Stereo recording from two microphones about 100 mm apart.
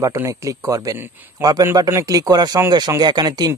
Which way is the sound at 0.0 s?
35° right (ahead or behind).